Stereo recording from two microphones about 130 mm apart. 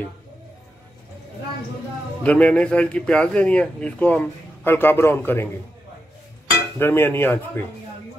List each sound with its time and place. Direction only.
2.2 s speech: 10° left (ahead or behind)
6.8 s speech: 20° left (ahead or behind)